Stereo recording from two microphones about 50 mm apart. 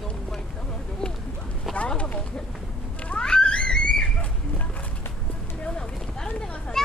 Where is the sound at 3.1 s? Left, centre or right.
Centre.